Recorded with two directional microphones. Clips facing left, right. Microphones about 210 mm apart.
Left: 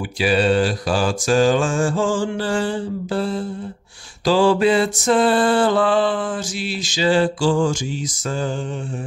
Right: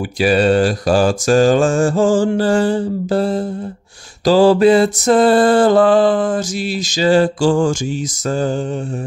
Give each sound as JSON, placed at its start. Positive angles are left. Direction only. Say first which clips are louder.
{"t": 0.2, "sound": "mantra", "louder": "right 4 dB", "side_deg": -45}